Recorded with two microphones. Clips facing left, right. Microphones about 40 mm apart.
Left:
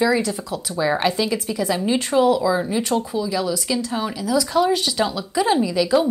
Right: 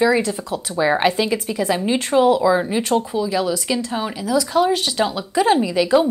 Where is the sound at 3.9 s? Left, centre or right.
Centre.